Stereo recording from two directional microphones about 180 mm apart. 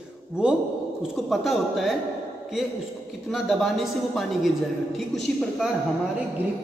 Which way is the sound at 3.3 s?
Centre (ahead or behind).